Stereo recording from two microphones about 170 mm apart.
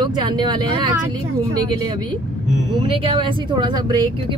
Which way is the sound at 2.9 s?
30° right (ahead or behind).